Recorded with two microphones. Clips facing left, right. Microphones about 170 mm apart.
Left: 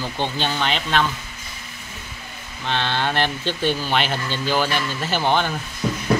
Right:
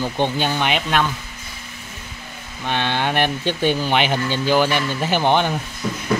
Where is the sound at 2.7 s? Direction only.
15° right (ahead or behind).